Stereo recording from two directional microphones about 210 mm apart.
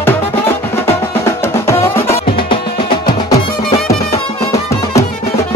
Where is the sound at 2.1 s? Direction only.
25° left (ahead or behind).